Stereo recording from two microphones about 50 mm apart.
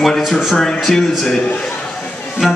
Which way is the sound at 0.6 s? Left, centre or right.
Centre.